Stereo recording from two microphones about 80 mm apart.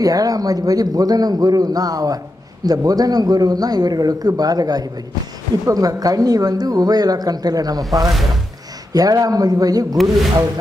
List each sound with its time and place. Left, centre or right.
0.0 s speech: right